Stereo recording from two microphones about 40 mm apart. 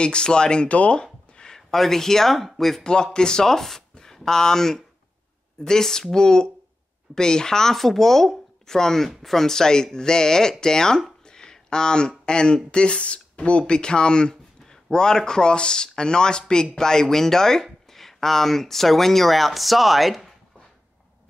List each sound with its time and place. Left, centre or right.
0.0 s speech: left
0.7 s speech: left
1.3 s a sound: left
1.7 s speech: centre
2.8 s speech: centre
11.2 s a sound: centre
12.7 s speech: left; by 20.3 s centre